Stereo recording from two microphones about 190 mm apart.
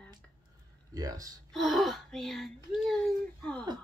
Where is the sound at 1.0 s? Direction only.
20° right (ahead or behind).